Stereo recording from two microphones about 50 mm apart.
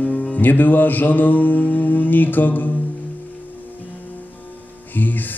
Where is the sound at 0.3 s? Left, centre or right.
Left.